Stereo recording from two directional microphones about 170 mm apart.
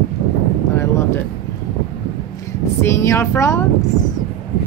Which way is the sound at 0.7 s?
15° left (ahead or behind).